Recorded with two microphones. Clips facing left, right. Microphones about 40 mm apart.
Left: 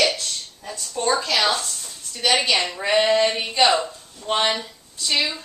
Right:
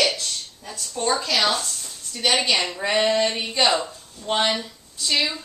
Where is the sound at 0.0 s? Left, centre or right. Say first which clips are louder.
Left 1 dB; centre.